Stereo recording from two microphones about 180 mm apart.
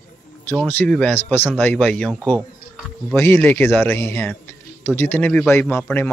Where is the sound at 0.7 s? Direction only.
10° left (ahead or behind).